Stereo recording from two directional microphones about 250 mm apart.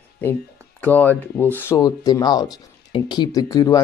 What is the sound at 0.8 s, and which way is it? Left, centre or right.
Speech, centre.